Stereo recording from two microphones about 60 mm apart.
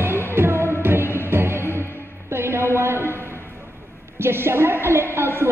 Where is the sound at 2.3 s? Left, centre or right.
Right.